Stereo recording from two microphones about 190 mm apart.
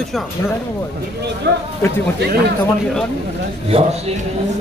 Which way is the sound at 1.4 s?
65° right (ahead or behind).